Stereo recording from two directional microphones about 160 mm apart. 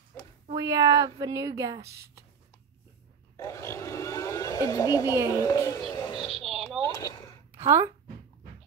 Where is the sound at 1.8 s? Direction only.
90° right.